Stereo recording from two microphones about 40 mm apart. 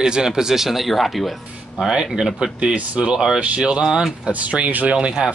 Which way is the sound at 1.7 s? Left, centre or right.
Centre.